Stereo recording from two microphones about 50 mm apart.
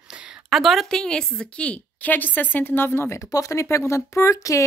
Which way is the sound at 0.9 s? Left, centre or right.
Centre.